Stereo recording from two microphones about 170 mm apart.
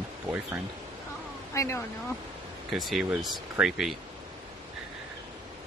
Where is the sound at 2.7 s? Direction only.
Centre (ahead or behind).